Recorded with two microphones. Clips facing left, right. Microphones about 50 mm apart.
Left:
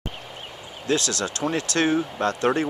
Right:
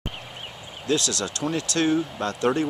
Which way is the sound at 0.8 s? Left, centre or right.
Centre.